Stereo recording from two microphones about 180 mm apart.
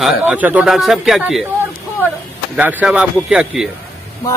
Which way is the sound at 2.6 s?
10° right (ahead or behind).